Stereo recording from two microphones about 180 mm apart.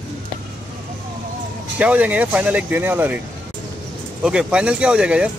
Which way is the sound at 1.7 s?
5° right (ahead or behind).